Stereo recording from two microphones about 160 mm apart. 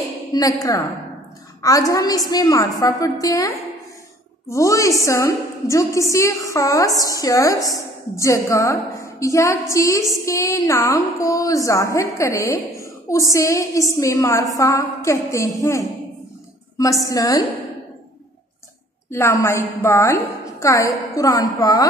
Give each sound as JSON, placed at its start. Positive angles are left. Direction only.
{"t": 0.3, "sound": "a woman's voice", "side_deg": 20}
{"t": 17.0, "sound": "a woman's voice", "side_deg": 20}
{"t": 19.0, "sound": "a woman's voice", "side_deg": 15}